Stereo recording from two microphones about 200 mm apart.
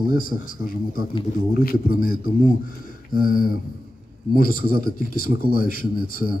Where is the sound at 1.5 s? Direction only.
45° left (ahead or behind).